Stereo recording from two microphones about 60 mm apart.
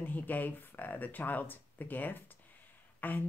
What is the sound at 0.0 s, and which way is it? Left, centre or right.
Speech, left.